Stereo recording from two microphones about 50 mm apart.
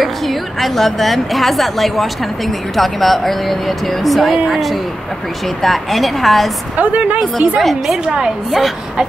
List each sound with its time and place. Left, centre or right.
0.0 s a woman's voice: centre
6.8 s a woman's voice: right
7.2 s a woman's voice: centre
8.0 s a woman's voice: centre
8.5 s a woman's voice: centre